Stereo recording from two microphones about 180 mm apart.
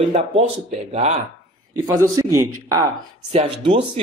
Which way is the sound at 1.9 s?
15° right (ahead or behind).